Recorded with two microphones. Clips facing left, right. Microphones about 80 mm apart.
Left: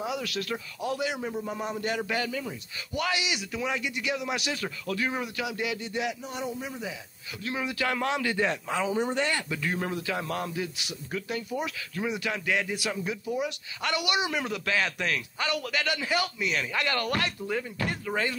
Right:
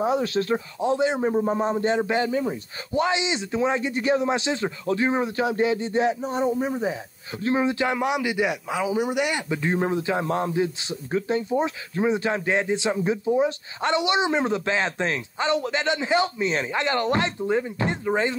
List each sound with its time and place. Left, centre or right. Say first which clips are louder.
0.0 s a man's voice: right 9 dB; right